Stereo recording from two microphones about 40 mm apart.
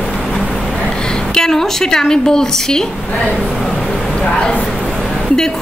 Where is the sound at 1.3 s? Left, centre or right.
Centre.